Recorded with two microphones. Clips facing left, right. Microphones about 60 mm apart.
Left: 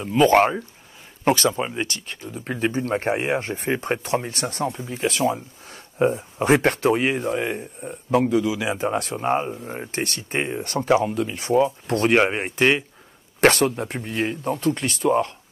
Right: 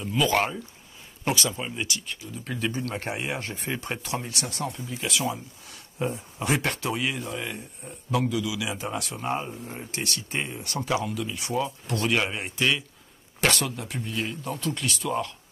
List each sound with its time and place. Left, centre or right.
0.0 s a man's voice: left